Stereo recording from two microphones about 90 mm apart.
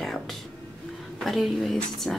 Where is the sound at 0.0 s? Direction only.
5° left (ahead or behind).